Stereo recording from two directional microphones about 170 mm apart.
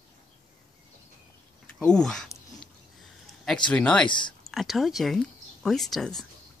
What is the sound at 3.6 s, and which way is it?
Speech, 5° left (ahead or behind).